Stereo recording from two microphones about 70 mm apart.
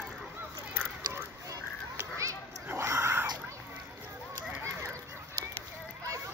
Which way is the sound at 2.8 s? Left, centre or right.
Right.